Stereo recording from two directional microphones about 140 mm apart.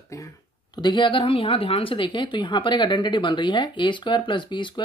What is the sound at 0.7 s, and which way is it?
Speech, 30° left (ahead or behind).